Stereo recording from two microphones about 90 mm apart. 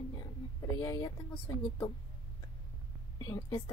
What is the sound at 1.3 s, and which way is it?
Speech, 65° left (ahead or behind).